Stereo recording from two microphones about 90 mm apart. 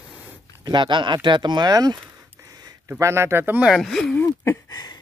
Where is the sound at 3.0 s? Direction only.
30° right (ahead or behind).